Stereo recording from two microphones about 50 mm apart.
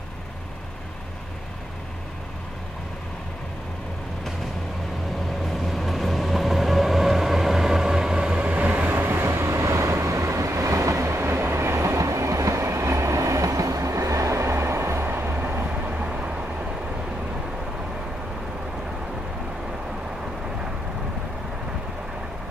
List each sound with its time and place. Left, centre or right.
5.4 s vehicle: centre; by 8.9 s right
8.9 s train: right
15.0 s vehicle: right